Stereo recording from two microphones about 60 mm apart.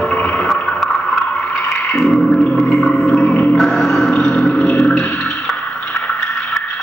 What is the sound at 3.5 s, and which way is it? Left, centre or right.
Music, centre.